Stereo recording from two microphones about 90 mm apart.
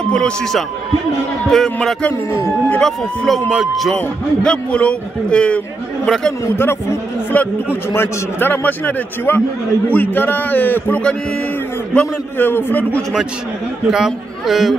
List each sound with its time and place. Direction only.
0.1 s a man's voice: 5° left (ahead or behind)
4.4 s a man's voice: 10° left (ahead or behind)
6.4 s a man's voice: 25° left (ahead or behind)
12.4 s a man's voice: 25° left (ahead or behind)
13.8 s a man's voice: 5° right (ahead or behind)